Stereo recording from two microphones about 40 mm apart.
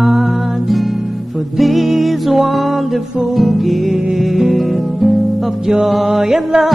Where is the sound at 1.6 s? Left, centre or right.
Centre.